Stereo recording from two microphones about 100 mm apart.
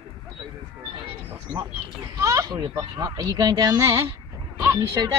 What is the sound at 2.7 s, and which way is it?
Speech, 30° right (ahead or behind).